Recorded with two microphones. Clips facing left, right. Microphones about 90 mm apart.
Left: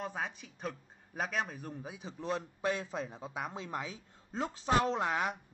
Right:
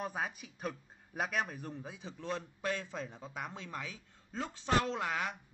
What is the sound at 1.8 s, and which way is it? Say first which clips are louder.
A man's voice: left 2 dB; 15° left (ahead or behind).